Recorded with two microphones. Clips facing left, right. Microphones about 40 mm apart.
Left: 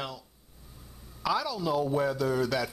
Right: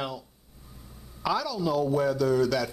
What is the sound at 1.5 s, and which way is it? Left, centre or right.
Speech, centre.